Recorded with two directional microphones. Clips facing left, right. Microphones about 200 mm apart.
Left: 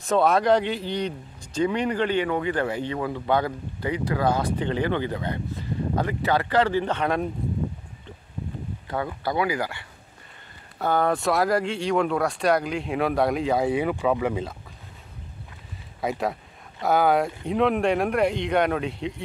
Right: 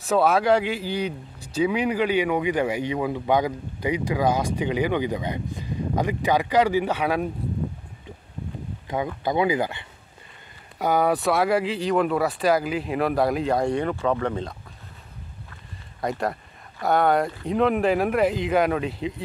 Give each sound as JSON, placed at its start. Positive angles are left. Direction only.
{"t": 0.0, "sound": "speech", "side_deg": -5}
{"t": 8.8, "sound": "speech", "side_deg": -15}
{"t": 10.8, "sound": "speech", "side_deg": -10}
{"t": 16.0, "sound": "speech", "side_deg": 0}